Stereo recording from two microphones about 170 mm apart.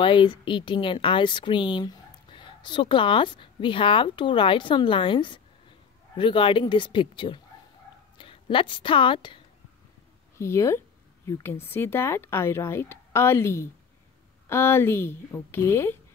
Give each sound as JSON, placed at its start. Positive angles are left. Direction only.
{"t": 0.0, "sound": "a woman's voice", "side_deg": 30}
{"t": 10.3, "sound": "speech", "side_deg": 15}